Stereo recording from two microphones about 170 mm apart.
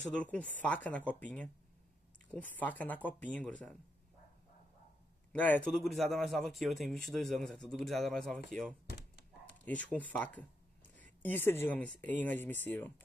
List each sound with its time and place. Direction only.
0.1 s speech: 5° left (ahead or behind)
5.3 s a man's voice: 10° left (ahead or behind)
8.8 s thunk: 85° left
9.7 s speech: 10° left (ahead or behind)